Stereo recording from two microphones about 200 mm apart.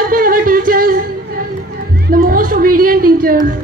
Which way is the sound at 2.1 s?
45° right (ahead or behind).